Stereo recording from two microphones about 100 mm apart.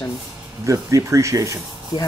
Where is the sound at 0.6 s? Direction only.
30° right (ahead or behind).